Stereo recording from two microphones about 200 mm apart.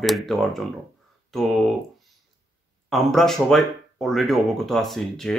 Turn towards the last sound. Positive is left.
turn(degrees=0)  # may be behind; listen again after turning